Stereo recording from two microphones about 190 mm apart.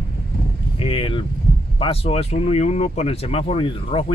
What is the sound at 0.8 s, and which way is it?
Speech, 30° left (ahead or behind).